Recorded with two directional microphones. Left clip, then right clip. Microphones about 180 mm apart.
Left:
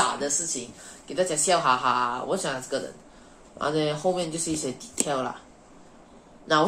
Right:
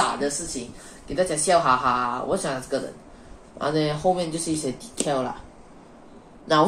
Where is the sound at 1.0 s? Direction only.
20° left (ahead or behind).